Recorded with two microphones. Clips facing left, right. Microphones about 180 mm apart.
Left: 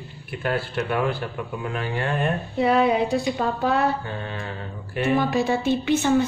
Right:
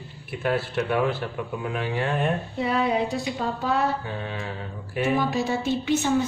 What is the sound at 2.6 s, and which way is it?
Speech, 65° left (ahead or behind).